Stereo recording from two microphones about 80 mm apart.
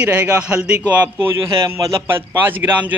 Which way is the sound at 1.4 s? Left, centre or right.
Right.